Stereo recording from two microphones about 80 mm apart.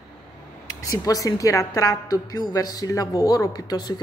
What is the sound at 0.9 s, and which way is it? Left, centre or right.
A woman's voice, left.